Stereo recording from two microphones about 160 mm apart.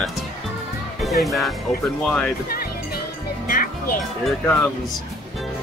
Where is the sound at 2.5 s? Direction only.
70° left (ahead or behind).